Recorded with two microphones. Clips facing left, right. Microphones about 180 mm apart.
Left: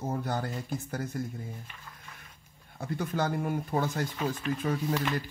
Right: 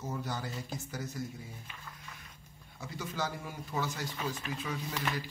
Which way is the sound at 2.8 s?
55° left (ahead or behind).